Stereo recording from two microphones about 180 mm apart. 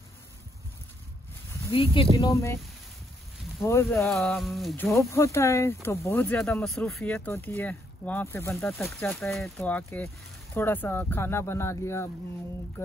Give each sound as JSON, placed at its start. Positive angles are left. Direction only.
{"t": 1.7, "sound": "speech", "side_deg": 30}
{"t": 2.1, "sound": "speech", "side_deg": 15}
{"t": 3.6, "sound": "speech", "side_deg": 15}
{"t": 4.0, "sound": "speech", "side_deg": 5}
{"t": 4.9, "sound": "speech", "side_deg": 15}
{"t": 7.1, "sound": "speech", "side_deg": 10}
{"t": 8.7, "sound": "speech", "side_deg": 0}
{"t": 9.0, "sound": "speech", "side_deg": 15}
{"t": 9.3, "sound": "speech", "side_deg": 5}